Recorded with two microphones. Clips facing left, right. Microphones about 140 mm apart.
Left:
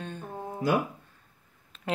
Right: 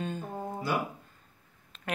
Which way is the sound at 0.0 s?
5° right (ahead or behind).